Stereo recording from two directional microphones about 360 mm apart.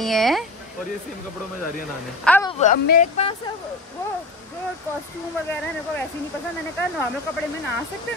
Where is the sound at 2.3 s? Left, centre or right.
Centre.